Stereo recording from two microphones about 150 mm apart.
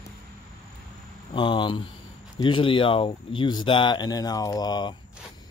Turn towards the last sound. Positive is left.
turn(degrees=30)  # may be behind; listen again after turning